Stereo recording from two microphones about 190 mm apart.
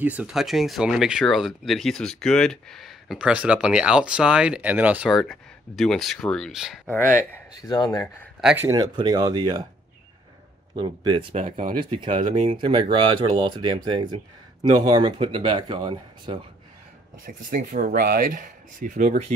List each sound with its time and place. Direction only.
0.0 s speech: 10° right (ahead or behind)
6.9 s speech: 10° left (ahead or behind)
8.6 s speech: 20° right (ahead or behind)
10.8 s speech: 25° right (ahead or behind)
11.4 s speech: 40° right (ahead or behind)
11.8 s speech: 25° right (ahead or behind)
12.2 s speech: 40° right (ahead or behind)
12.5 s speech: 30° right (ahead or behind)
17.3 s speech: 45° right (ahead or behind)